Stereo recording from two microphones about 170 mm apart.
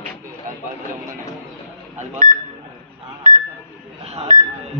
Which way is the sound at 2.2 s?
55° right (ahead or behind).